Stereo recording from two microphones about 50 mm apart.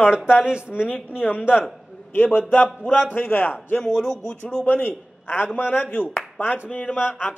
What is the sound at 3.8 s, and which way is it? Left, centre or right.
Speech, centre.